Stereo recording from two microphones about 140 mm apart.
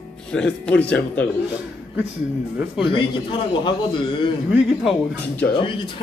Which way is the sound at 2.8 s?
35° left (ahead or behind).